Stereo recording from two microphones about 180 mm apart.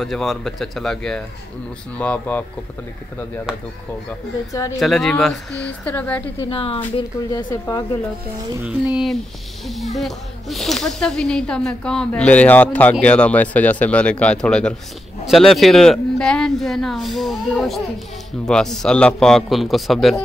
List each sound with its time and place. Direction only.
0.0 s speech: centre (ahead or behind)
4.5 s speech: 20° left (ahead or behind)
4.7 s speech: centre (ahead or behind)
6.5 s speech: 30° left (ahead or behind)
8.6 s speech: centre (ahead or behind)